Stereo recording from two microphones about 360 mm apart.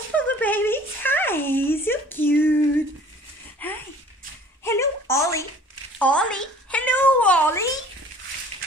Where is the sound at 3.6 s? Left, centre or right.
Centre.